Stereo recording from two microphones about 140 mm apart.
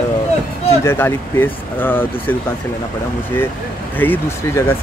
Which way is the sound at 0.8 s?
20° left (ahead or behind).